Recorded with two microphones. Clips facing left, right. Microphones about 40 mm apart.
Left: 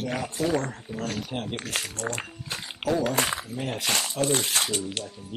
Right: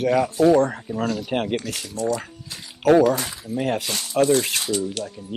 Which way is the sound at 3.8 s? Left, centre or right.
Left.